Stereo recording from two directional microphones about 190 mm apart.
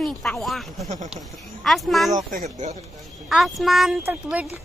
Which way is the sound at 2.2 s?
45° right (ahead or behind).